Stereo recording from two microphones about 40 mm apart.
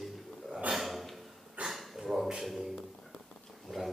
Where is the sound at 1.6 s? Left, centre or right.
Right.